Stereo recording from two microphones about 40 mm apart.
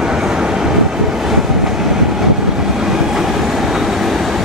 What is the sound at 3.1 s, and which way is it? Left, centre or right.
Train, centre.